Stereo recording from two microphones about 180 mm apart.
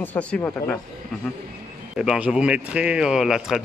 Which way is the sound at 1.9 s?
5° right (ahead or behind).